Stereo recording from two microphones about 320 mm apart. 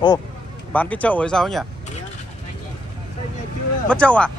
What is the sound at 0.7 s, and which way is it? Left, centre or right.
Speech, centre.